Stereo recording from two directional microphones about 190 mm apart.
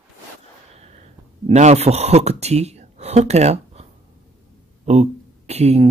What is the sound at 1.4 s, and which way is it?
Speech, 35° right (ahead or behind).